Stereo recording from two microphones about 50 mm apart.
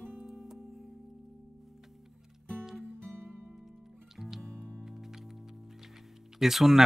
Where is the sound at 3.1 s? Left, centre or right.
Right.